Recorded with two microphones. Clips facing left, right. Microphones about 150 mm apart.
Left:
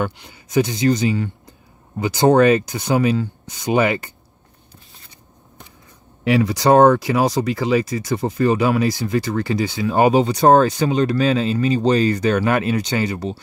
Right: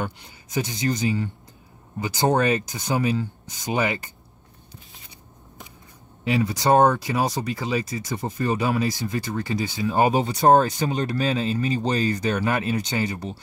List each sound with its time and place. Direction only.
0.0 s speech: 70° left (ahead or behind)
6.2 s speech: 80° left